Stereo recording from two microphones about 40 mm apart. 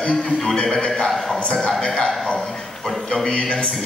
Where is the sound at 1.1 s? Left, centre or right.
Centre.